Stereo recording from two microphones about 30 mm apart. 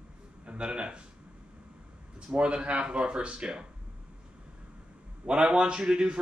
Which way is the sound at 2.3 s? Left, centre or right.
Right.